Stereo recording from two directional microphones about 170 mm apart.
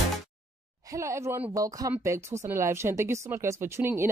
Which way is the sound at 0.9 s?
15° right (ahead or behind).